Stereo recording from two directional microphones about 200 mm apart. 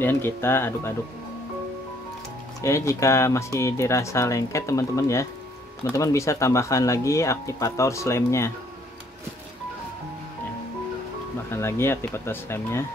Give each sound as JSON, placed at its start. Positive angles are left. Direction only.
{"t": 0.0, "sound": "speech", "side_deg": 10}
{"t": 2.6, "sound": "speech", "side_deg": 15}
{"t": 11.5, "sound": "speech", "side_deg": 10}